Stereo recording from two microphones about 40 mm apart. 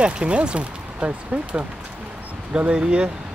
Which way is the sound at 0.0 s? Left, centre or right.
Right.